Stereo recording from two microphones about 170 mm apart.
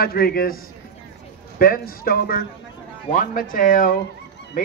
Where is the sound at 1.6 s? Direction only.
60° left (ahead or behind).